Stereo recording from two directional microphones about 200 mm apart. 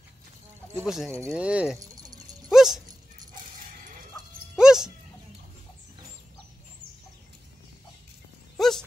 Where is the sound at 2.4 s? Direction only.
Centre (ahead or behind).